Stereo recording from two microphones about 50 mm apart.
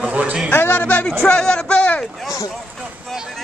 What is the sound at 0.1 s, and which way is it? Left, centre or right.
Speech, right.